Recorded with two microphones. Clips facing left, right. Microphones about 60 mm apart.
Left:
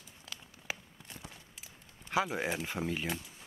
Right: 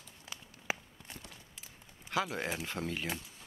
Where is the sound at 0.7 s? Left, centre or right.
Right.